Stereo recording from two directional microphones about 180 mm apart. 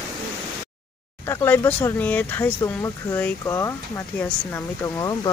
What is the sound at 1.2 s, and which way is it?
Speech, 15° left (ahead or behind).